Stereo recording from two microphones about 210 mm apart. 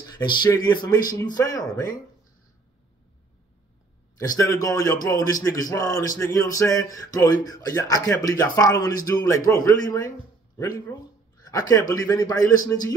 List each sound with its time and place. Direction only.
0.0 s a man's voice: 20° left (ahead or behind)
4.2 s a man's voice: 15° left (ahead or behind)